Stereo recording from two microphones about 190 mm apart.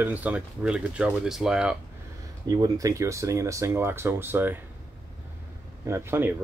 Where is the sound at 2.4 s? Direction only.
20° right (ahead or behind).